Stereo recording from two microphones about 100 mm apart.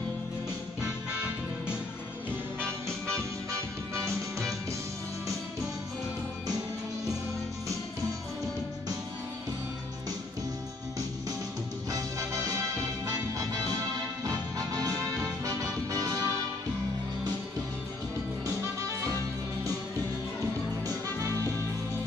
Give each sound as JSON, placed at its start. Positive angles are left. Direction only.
{"t": 3.5, "sound": "music", "side_deg": -30}
{"t": 11.9, "sound": "music", "side_deg": -30}
{"t": 20.8, "sound": "music", "side_deg": -35}